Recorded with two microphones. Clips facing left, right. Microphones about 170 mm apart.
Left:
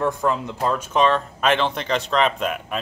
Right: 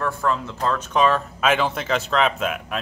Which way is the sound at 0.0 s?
15° left (ahead or behind).